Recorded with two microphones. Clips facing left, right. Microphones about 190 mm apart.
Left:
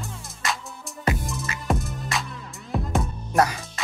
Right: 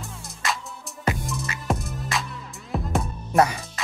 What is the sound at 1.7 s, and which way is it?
Music, centre (ahead or behind).